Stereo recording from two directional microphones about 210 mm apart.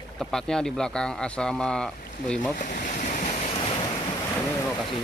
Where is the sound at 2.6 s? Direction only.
40° left (ahead or behind); by 3.9 s 25° left (ahead or behind).